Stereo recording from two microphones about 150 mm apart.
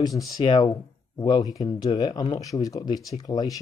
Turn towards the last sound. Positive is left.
turn(degrees=25)  # may be behind; listen again after turning